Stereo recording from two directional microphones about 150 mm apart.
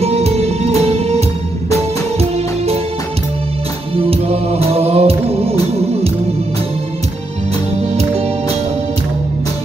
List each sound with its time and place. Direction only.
0.0 s music: 45° right (ahead or behind)
3.9 s music: 40° right (ahead or behind)
7.9 s music: 45° right (ahead or behind)